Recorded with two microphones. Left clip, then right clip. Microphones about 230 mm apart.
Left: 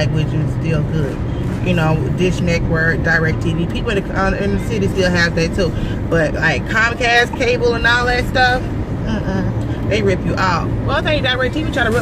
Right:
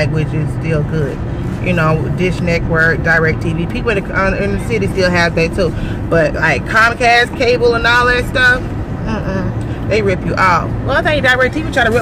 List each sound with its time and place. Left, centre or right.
0.0 s speech: centre
10.0 s speech: centre